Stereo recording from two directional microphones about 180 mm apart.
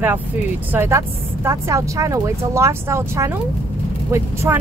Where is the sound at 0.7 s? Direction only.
15° right (ahead or behind).